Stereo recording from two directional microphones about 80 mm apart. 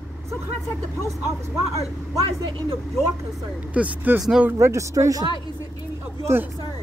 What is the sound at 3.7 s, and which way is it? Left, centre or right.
Speech, right.